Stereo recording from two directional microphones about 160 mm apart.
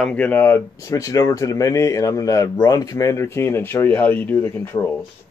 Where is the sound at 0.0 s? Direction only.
10° left (ahead or behind).